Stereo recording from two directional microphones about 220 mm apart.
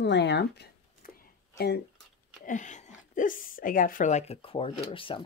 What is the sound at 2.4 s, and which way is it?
Speech, 35° left (ahead or behind).